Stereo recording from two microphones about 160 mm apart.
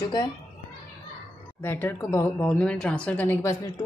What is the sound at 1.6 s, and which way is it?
Speech, 15° left (ahead or behind).